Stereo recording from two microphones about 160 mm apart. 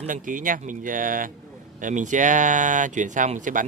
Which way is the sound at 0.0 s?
55° right (ahead or behind).